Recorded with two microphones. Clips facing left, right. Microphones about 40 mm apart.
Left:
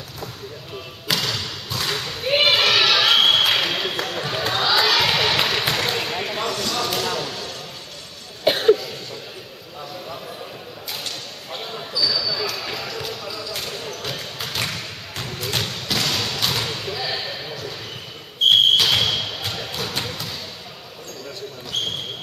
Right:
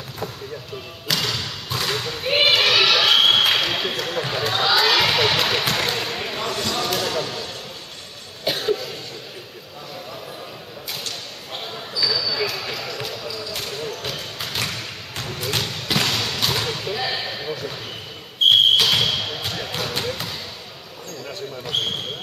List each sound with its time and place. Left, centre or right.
1.0 s basketball bounce: centre
1.8 s a sound: centre
4.0 s basketball bounce: centre
8.5 s cough: centre
10.9 s arrow: centre
12.1 s basketball bounce: centre